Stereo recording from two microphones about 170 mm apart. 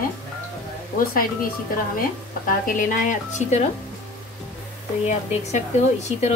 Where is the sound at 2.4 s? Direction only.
55° left (ahead or behind).